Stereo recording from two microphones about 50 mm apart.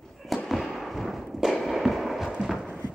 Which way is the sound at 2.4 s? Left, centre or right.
Centre.